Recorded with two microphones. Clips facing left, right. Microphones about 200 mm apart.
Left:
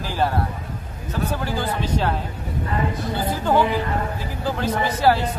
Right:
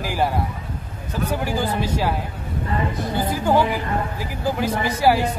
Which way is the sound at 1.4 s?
10° right (ahead or behind).